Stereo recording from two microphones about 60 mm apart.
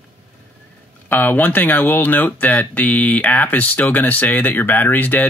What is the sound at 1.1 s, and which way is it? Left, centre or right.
Speech, left.